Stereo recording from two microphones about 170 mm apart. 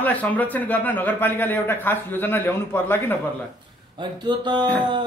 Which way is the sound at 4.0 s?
25° right (ahead or behind).